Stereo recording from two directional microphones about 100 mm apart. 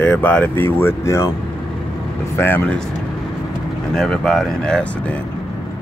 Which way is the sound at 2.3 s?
20° left (ahead or behind).